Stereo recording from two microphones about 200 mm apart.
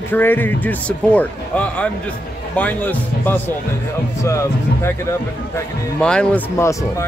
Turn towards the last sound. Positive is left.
turn(degrees=15)  # may be behind; listen again after turning